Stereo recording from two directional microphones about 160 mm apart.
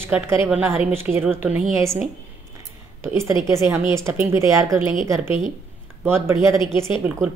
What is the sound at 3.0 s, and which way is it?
A woman's voice, 15° right (ahead or behind).